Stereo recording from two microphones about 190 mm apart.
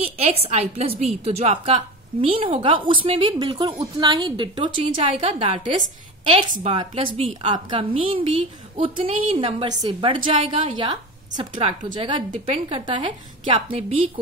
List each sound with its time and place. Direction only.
0.0 s a woman's voice: 30° right (ahead or behind)